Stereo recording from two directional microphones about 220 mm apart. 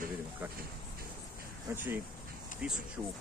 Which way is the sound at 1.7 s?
10° right (ahead or behind).